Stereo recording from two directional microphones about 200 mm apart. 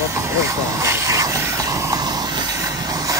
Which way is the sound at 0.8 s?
15° right (ahead or behind).